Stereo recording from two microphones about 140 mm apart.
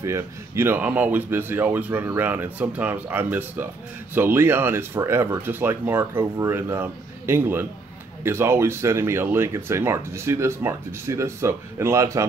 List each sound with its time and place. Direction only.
0.0 s speech: 20° right (ahead or behind)